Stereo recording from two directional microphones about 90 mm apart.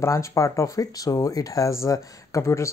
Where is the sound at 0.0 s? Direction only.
35° left (ahead or behind).